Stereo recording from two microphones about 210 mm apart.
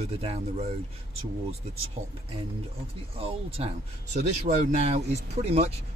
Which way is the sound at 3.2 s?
25° right (ahead or behind).